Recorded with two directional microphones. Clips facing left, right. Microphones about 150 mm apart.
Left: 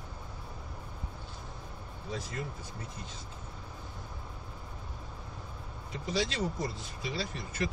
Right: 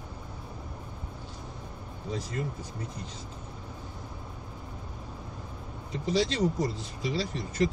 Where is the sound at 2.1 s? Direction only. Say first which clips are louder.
Right 4 dB; 35° right (ahead or behind).